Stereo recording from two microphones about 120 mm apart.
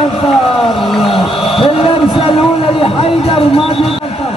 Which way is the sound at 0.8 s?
Centre (ahead or behind).